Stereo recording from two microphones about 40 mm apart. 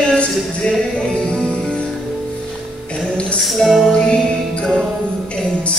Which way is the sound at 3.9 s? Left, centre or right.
Left.